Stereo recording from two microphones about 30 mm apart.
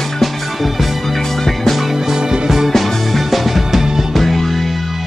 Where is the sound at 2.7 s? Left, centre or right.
Centre.